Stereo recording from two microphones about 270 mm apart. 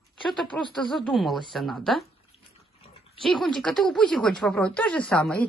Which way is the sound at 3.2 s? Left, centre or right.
Centre.